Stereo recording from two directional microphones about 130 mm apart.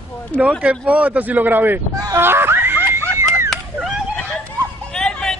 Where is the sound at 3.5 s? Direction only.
5° right (ahead or behind).